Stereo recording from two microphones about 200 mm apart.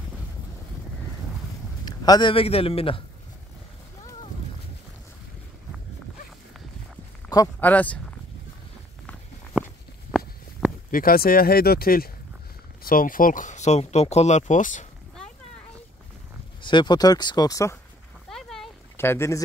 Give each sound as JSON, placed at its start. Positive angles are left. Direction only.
{"t": 1.9, "sound": "a man's voice", "side_deg": 20}
{"t": 7.3, "sound": "a sound", "side_deg": 20}
{"t": 7.6, "sound": "speech", "side_deg": 5}
{"t": 10.9, "sound": "speech", "side_deg": 45}
{"t": 16.6, "sound": "speech", "side_deg": 25}
{"t": 18.3, "sound": "a sound", "side_deg": 0}
{"t": 18.9, "sound": "speech", "side_deg": 10}